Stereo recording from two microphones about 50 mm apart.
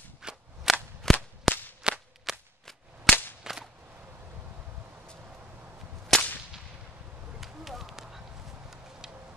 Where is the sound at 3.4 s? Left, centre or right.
Centre.